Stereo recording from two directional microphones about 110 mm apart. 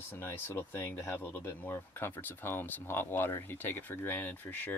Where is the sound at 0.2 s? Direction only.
20° left (ahead or behind).